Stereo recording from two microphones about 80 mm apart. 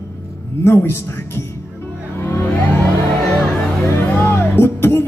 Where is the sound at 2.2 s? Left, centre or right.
Left.